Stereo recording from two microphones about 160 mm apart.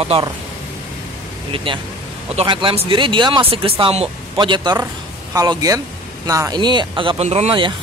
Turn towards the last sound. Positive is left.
turn(degrees=-30)  # may be behind; listen again after turning